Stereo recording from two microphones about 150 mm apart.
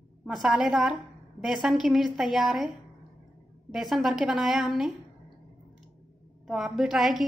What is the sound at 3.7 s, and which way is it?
A woman's voice, centre (ahead or behind).